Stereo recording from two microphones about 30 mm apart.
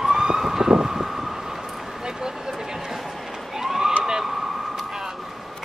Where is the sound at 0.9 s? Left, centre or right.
Centre.